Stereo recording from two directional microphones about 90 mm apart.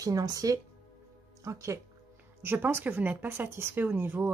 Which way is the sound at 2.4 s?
25° right (ahead or behind).